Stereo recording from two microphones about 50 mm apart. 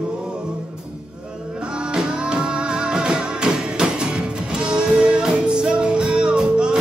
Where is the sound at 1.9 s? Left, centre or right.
Centre.